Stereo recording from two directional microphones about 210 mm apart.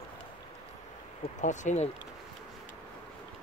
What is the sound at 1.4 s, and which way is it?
Speech, 35° left (ahead or behind).